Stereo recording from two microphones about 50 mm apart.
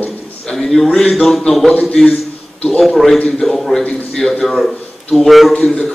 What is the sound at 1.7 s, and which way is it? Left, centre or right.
Speech, centre.